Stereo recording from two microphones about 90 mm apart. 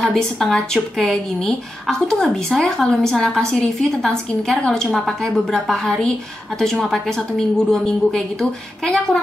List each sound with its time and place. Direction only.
0.0 s speech: 5° left (ahead or behind)